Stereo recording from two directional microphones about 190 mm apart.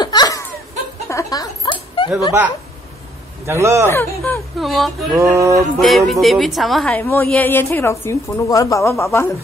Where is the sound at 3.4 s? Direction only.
15° right (ahead or behind).